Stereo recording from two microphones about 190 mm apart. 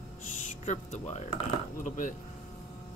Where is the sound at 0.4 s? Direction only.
40° left (ahead or behind).